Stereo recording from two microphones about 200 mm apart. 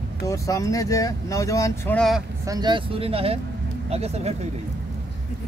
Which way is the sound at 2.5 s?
20° right (ahead or behind).